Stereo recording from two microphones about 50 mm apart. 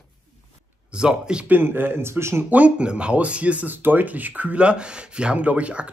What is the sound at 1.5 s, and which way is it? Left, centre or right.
Speech, right.